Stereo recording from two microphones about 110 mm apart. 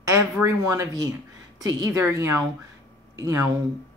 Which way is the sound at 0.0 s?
25° right (ahead or behind).